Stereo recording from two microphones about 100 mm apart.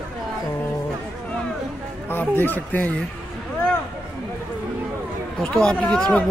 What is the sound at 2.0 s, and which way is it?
Speech, 20° left (ahead or behind).